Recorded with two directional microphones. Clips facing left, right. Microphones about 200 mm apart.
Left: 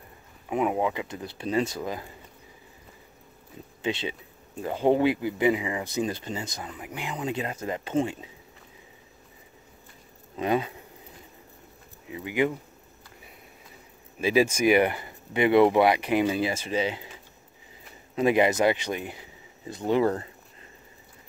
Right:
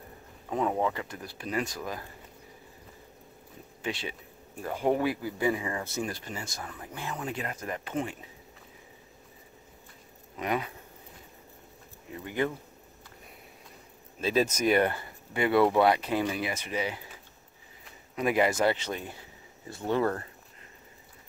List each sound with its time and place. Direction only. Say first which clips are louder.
0.5 s speech: left 3 dB; 10° left (ahead or behind)
3.8 s speech: left 5 dB; 25° left (ahead or behind)
10.3 s speech: left 5 dB; 25° left (ahead or behind)
12.1 s speech: left 4 dB; 5° left (ahead or behind)
14.2 s speech: left 4 dB; 10° left (ahead or behind)
16.3 s speech: left 5 dB; 30° left (ahead or behind)
18.1 s speech: left 4 dB; 20° left (ahead or behind)